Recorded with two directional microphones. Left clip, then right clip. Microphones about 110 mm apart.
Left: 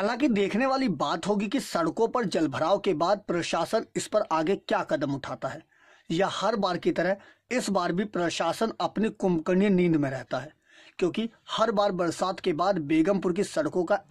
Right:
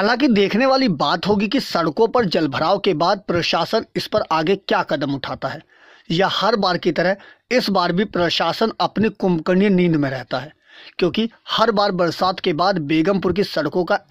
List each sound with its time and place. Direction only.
0.0 s speech: 40° right (ahead or behind)